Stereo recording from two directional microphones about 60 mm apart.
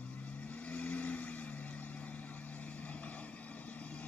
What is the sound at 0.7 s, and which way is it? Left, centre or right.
Vehicle, left.